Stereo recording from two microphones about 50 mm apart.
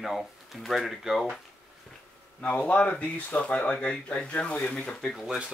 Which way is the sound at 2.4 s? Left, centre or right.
Left.